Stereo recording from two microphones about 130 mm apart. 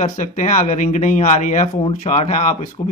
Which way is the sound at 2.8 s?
45° left (ahead or behind).